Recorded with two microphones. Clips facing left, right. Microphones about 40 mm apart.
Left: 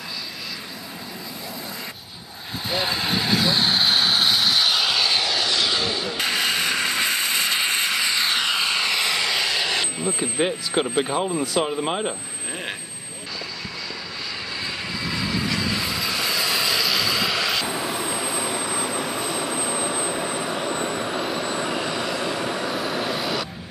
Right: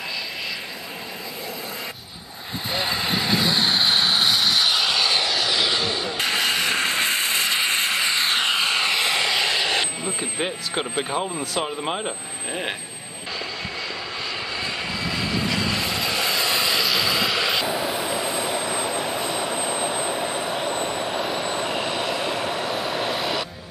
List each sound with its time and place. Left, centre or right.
2.7 s vehicle: centre
6.7 s a sound: right
7.3 s mechanisms: centre
7.8 s vehicle: right
10.0 s speech: centre
14.6 s vehicle: centre
21.1 s vehicle: centre
21.5 s vehicle: centre
22.7 s vehicle: centre